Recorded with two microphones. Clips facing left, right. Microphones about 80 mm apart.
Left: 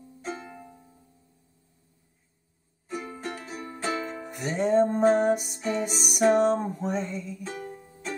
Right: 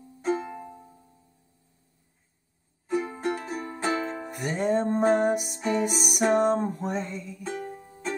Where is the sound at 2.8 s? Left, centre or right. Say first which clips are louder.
Right 7 dB; right.